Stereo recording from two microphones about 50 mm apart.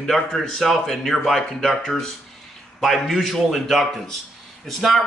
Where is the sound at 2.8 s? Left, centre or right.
Centre.